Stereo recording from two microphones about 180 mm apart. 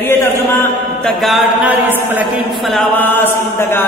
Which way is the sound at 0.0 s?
10° left (ahead or behind).